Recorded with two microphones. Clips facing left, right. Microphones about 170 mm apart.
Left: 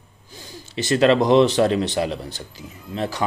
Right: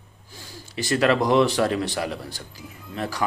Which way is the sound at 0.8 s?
25° left (ahead or behind).